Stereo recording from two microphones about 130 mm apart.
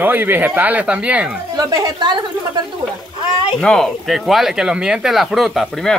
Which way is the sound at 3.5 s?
5° left (ahead or behind).